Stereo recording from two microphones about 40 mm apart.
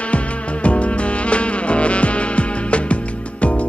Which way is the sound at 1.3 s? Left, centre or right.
Left.